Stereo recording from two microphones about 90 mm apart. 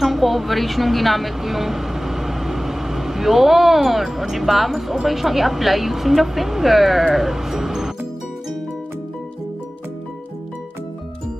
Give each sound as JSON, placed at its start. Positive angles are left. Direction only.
{"t": 0.0, "sound": "a woman's voice", "side_deg": 0}